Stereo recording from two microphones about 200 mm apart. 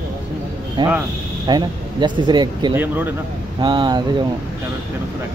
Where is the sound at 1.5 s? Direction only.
20° right (ahead or behind).